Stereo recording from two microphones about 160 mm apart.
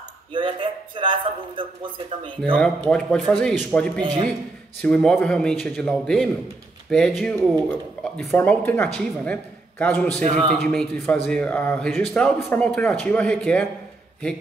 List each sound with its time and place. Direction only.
0.3 s speech: 30° right (ahead or behind)
2.5 s a man's voice: 5° left (ahead or behind)
10.2 s speech: 45° right (ahead or behind)
10.6 s a man's voice: centre (ahead or behind)